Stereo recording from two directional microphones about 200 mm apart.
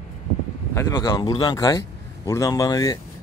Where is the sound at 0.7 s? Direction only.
15° left (ahead or behind).